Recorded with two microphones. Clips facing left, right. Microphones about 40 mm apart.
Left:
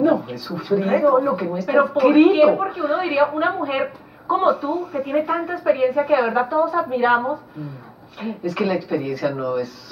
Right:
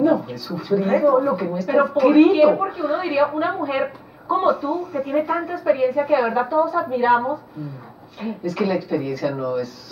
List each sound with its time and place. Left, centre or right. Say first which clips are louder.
0.0 s a sound: even; centre
0.6 s speech: even; centre
8.2 s speech: even; centre